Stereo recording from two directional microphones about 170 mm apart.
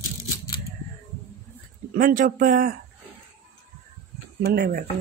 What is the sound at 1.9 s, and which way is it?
Speech, 55° right (ahead or behind).